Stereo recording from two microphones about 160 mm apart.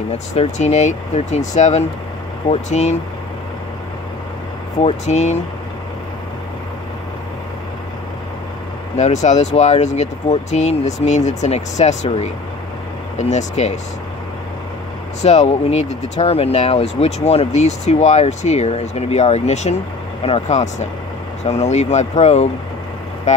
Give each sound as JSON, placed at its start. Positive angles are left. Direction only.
{"t": 0.1, "sound": "speech", "side_deg": 45}
{"t": 4.8, "sound": "speech", "side_deg": 45}
{"t": 8.9, "sound": "speech", "side_deg": 45}
{"t": 13.3, "sound": "speech", "side_deg": 45}
{"t": 15.2, "sound": "speech", "side_deg": 45}